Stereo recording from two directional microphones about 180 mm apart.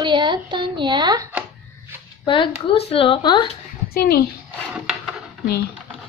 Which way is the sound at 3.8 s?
60° left (ahead or behind).